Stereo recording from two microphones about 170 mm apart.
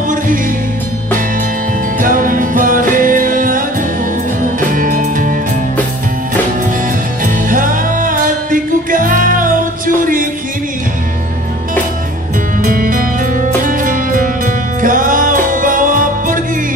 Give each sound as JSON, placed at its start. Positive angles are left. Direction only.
{"t": 2.0, "sound": "music", "side_deg": -55}
{"t": 7.4, "sound": "music", "side_deg": -55}
{"t": 12.6, "sound": "music", "side_deg": -55}